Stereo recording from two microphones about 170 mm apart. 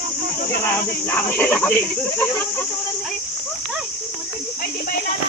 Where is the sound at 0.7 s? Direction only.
10° left (ahead or behind).